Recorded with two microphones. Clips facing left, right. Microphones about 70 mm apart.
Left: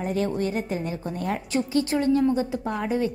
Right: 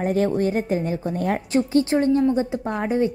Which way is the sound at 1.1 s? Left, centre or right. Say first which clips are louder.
Right 4 dB; right.